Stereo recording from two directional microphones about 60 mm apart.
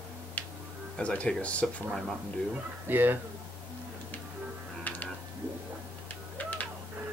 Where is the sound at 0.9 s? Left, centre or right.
Centre.